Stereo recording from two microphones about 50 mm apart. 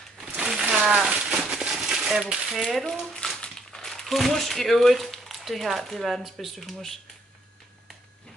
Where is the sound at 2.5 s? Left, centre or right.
Centre.